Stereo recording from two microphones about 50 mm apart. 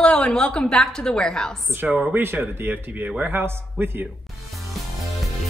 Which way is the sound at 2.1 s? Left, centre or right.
Right.